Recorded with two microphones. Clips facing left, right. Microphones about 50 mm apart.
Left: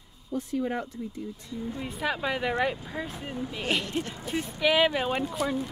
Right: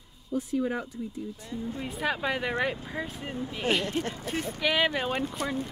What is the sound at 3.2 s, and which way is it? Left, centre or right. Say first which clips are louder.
Speech: even; right.